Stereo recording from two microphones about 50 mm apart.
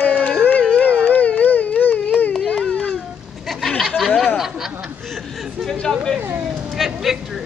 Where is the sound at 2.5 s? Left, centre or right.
Left.